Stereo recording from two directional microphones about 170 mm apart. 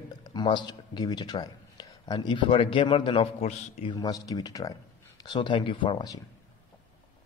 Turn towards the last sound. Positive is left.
turn(degrees=25)  # may be behind; listen again after turning